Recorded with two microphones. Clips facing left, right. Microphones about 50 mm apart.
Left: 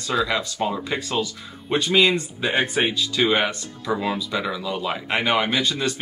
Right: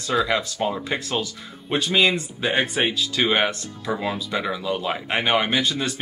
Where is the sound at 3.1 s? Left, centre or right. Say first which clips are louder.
Left 1 dB; centre.